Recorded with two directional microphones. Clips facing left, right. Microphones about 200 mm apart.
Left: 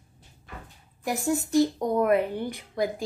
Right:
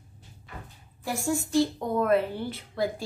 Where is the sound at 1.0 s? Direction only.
20° left (ahead or behind).